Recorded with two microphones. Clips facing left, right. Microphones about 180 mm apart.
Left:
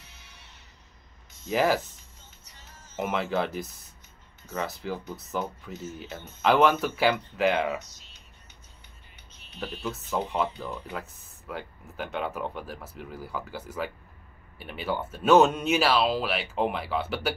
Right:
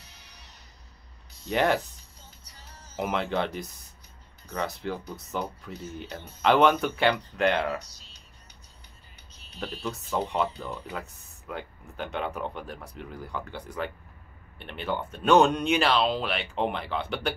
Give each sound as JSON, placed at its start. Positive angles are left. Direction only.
{"t": 0.0, "sound": "music", "side_deg": -40}
{"t": 1.5, "sound": "speech", "side_deg": 5}
{"t": 2.4, "sound": "music", "side_deg": -35}
{"t": 3.0, "sound": "speech", "side_deg": 0}
{"t": 7.9, "sound": "whispering", "side_deg": -35}
{"t": 9.3, "sound": "a sound", "side_deg": -35}
{"t": 9.6, "sound": "speech", "side_deg": 0}